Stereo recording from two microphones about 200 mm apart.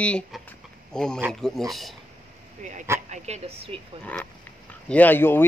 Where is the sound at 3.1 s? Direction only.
35° right (ahead or behind).